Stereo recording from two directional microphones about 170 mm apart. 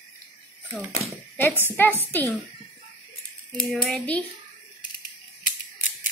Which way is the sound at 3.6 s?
Centre (ahead or behind).